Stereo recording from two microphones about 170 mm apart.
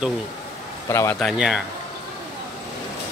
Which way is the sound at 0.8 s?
15° left (ahead or behind).